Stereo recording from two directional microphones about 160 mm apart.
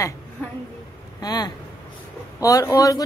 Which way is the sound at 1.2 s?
25° left (ahead or behind).